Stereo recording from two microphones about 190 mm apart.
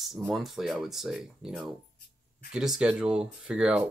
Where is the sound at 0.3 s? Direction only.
Centre (ahead or behind).